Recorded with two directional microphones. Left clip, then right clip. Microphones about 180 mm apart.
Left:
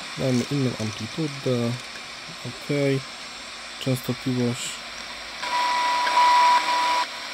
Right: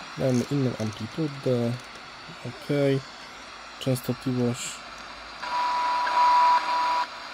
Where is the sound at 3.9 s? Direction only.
5° left (ahead or behind).